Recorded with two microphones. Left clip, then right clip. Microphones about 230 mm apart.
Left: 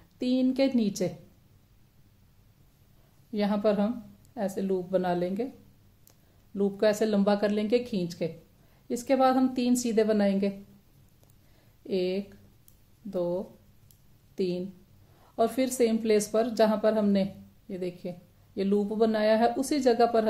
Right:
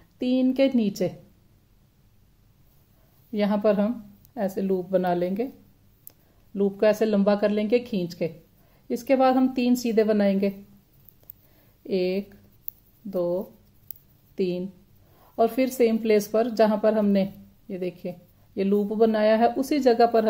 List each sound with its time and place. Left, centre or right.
0.2 s a woman's voice: centre
3.3 s a woman's voice: right
6.5 s a woman's voice: centre
11.8 s a woman's voice: right
14.3 s a sound: right
15.1 s a woman's voice: centre